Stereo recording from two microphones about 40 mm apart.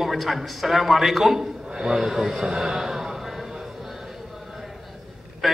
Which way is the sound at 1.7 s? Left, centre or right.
Centre.